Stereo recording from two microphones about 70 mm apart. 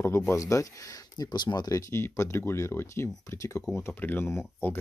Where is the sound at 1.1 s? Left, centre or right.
Left.